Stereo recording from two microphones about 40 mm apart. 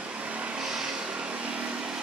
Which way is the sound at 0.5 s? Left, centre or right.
Centre.